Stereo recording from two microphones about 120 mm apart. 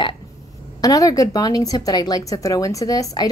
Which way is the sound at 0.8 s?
30° left (ahead or behind).